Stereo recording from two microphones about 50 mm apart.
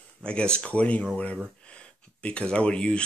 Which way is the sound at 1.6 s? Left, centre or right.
Left.